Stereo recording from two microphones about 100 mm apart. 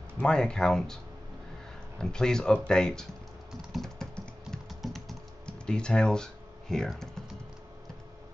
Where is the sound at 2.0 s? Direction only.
5° left (ahead or behind).